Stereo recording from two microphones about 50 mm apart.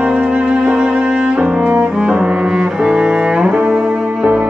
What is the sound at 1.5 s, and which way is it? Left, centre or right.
Cello, right.